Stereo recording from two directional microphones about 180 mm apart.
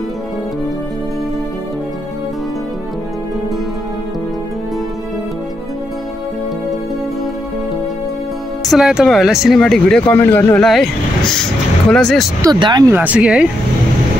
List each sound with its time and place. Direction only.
8.6 s speech: centre (ahead or behind)
12.4 s speech: 20° right (ahead or behind)
12.9 s speech: 10° right (ahead or behind)